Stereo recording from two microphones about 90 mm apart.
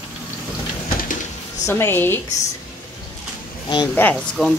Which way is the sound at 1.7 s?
25° left (ahead or behind).